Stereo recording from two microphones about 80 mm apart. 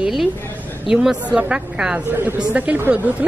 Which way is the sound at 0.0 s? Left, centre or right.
Centre.